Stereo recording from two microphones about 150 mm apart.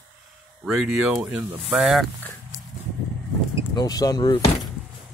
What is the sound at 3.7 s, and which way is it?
Speech, 25° left (ahead or behind).